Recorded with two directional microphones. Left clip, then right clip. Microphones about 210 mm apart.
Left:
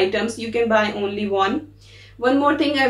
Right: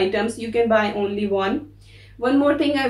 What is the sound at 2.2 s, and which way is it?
Speech, centre (ahead or behind).